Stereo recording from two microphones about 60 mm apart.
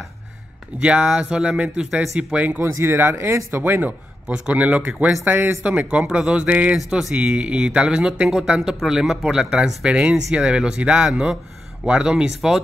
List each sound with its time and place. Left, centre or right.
0.7 s speech: centre
2.8 s speech: right
4.3 s speech: right
9.8 s speech: centre
12.4 s speech: centre